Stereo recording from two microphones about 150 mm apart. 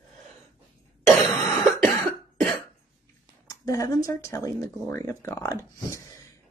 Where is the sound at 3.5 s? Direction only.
25° left (ahead or behind).